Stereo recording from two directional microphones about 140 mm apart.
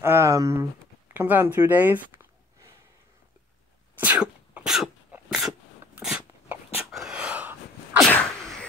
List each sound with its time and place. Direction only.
0.0 s speech: 20° right (ahead or behind)
4.0 s sneeze: 10° right (ahead or behind)
6.0 s a sound: 10° right (ahead or behind)
6.9 s sneeze: 5° right (ahead or behind)